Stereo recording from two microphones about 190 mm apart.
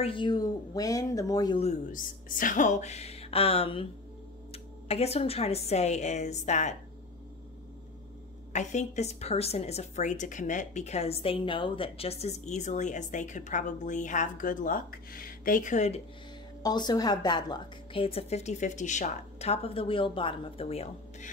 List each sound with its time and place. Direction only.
0.0 s a woman's voice: 25° left (ahead or behind)
1.6 s a woman's voice: 40° left (ahead or behind)
8.5 s a woman's voice: 35° left (ahead or behind)
16.6 s a woman's voice: 20° left (ahead or behind)